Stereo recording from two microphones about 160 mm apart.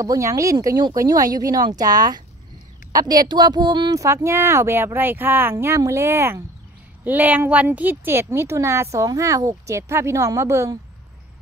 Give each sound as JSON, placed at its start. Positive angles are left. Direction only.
{"t": 0.0, "sound": "speech", "side_deg": -20}